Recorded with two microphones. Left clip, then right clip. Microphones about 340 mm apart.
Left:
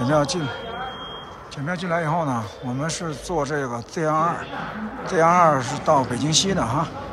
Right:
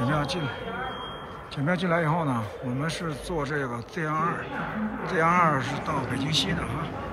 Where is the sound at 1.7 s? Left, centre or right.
Centre.